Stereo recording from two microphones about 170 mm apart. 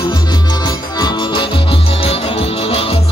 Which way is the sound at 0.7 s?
25° left (ahead or behind).